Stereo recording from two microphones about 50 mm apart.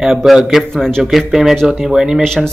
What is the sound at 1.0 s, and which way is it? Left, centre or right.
Speech, centre.